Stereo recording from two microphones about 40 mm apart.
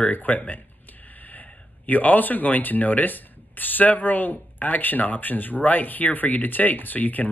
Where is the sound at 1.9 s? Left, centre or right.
Left.